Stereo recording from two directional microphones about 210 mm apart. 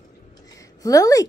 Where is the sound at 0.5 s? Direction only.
15° left (ahead or behind).